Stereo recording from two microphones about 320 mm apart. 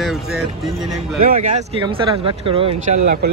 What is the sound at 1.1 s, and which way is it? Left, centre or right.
Speech, centre.